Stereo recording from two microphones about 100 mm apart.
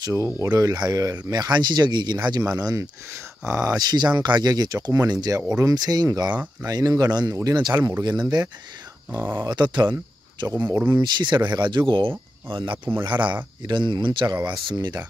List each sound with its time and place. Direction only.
0.0 s speech: 30° right (ahead or behind)
2.6 s speech: 30° right (ahead or behind)
3.6 s speech: 40° right (ahead or behind)
9.1 s speech: 25° right (ahead or behind)
9.5 s speech: 50° right (ahead or behind)
10.5 s speech: 35° right (ahead or behind)
10.9 s speech: 45° right (ahead or behind)
12.7 s speech: 20° right (ahead or behind)
13.0 s speech: 50° right (ahead or behind)